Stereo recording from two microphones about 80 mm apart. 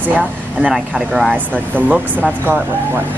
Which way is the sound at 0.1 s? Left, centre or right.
Centre.